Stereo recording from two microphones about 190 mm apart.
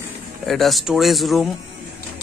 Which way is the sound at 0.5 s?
Centre (ahead or behind).